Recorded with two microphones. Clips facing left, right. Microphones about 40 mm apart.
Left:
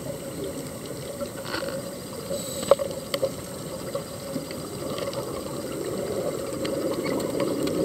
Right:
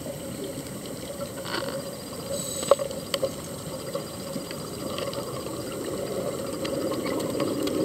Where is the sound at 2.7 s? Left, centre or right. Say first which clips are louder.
Left 1 dB; centre.